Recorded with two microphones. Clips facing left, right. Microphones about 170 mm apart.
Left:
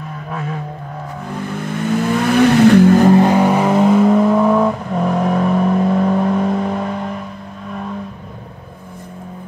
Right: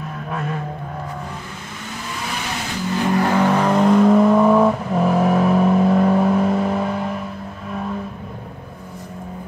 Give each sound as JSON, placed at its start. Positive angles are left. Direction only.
{"t": 0.3, "sound": "vehicle", "side_deg": 0}
{"t": 2.0, "sound": "vehicle", "side_deg": 60}
{"t": 3.2, "sound": "vehicle", "side_deg": 20}